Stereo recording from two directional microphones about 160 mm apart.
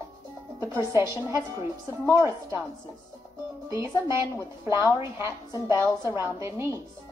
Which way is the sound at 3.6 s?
20° right (ahead or behind).